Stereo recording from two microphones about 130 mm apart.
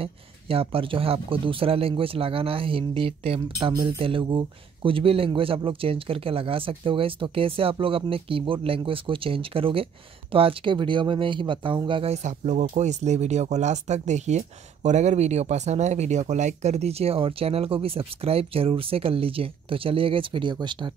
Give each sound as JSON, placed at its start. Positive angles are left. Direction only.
{"t": 0.0, "sound": "a man's voice", "side_deg": -45}
{"t": 12.1, "sound": "speech", "side_deg": -65}